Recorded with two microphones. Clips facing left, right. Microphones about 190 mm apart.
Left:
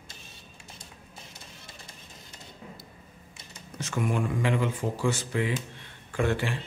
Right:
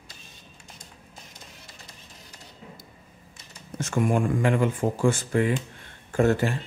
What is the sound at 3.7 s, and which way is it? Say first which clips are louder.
Speech: right 5 dB; 50° right (ahead or behind).